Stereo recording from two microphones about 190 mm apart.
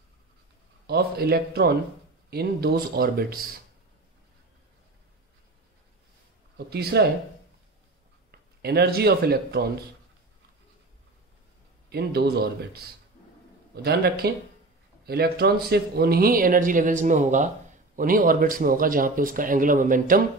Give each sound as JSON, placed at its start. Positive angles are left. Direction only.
{"t": 0.8, "sound": "a man's voice", "side_deg": -55}
{"t": 6.7, "sound": "a man's voice", "side_deg": -60}
{"t": 8.3, "sound": "speech", "side_deg": -55}
{"t": 11.9, "sound": "a man's voice", "side_deg": -55}
{"t": 14.2, "sound": "a man's voice", "side_deg": -55}